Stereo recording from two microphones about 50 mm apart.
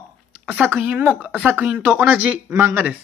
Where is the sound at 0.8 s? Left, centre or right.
Right.